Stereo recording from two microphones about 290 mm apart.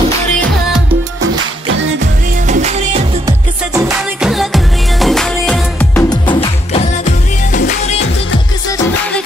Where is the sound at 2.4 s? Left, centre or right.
Right.